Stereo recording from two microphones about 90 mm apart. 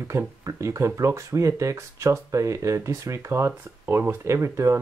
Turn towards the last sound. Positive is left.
turn(degrees=-30)  # may be behind; listen again after turning